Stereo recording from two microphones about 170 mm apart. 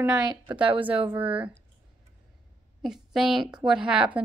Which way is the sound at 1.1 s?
10° right (ahead or behind).